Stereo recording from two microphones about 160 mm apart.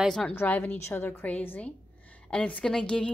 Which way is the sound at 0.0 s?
5° left (ahead or behind).